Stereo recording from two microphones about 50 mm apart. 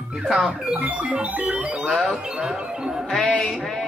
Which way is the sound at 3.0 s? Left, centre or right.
Centre.